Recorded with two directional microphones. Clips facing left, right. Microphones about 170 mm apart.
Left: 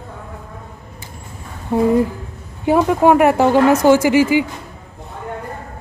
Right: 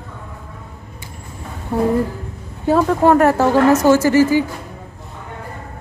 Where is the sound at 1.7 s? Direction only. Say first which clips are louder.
Left 3 dB; 15° left (ahead or behind).